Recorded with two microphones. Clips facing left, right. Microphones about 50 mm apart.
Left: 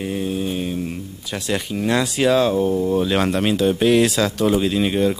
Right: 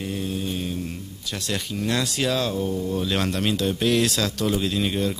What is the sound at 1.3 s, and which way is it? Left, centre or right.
A man's voice, centre.